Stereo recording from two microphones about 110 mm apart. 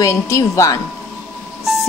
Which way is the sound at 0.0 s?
30° left (ahead or behind).